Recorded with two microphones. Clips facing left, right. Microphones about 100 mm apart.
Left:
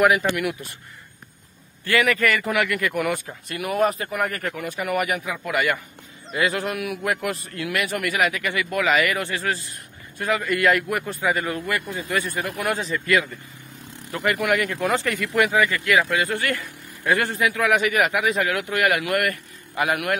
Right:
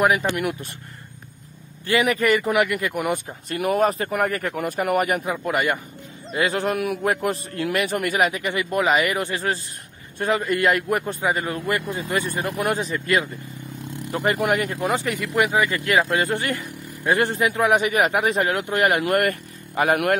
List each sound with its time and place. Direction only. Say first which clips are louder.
0.0 s a man's voice: left 1 dB; 30° right (ahead or behind)
1.9 s a man's voice: right 1 dB; 20° right (ahead or behind)
3.5 s a man's voice: right 2 dB; 35° right (ahead or behind)
15.0 s speech: even; 15° right (ahead or behind)
15.4 s a man's voice: left 1 dB; 30° right (ahead or behind)
18.1 s speech: right 1 dB; 35° right (ahead or behind)